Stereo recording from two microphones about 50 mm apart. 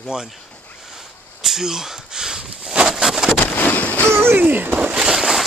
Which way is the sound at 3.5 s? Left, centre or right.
Left.